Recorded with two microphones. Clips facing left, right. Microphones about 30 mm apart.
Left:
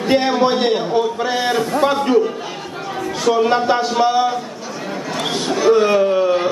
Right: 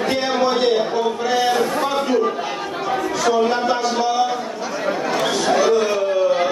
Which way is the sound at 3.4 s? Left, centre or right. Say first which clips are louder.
Left 3 dB; centre.